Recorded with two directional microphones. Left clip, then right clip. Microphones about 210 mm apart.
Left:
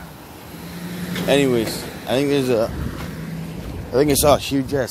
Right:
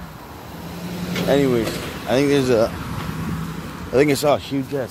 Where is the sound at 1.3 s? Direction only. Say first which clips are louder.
Left 1 dB; 20° left (ahead or behind).